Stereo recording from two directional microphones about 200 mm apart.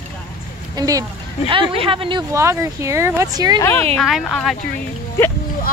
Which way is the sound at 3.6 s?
10° left (ahead or behind).